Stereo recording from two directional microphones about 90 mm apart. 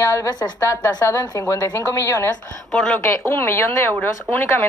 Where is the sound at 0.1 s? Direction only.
30° left (ahead or behind).